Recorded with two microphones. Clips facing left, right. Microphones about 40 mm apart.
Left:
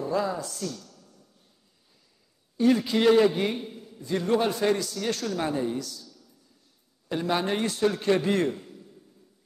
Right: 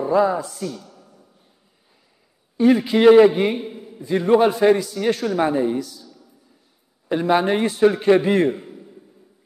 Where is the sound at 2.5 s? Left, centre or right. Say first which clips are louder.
Right 6 dB; centre.